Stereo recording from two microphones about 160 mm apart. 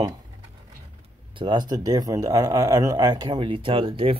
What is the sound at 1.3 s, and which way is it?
Speech, 30° right (ahead or behind).